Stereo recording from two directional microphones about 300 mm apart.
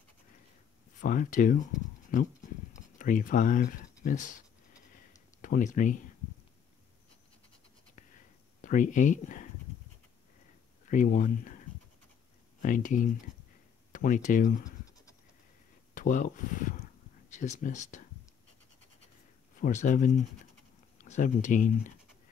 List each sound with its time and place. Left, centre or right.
0.9 s speech: left
5.4 s speech: left
8.5 s speech: left
10.9 s speech: left
12.6 s speech: left
15.9 s speech: left
19.5 s speech: left